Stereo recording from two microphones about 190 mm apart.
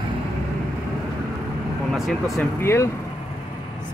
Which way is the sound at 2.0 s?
Centre (ahead or behind).